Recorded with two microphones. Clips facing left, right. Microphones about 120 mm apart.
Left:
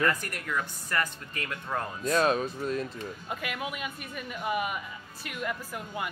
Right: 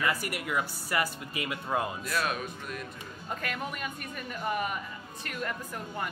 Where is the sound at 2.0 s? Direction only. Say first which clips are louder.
Left 7 dB; 30° left (ahead or behind).